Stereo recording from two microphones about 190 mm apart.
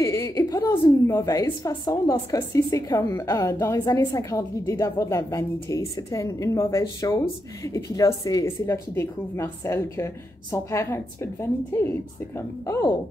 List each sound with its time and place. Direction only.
0.0 s a woman's voice: 15° left (ahead or behind)
12.4 s a woman's voice: 15° left (ahead or behind)